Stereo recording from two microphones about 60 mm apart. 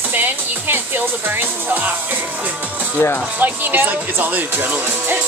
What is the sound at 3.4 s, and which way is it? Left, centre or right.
Speech, right.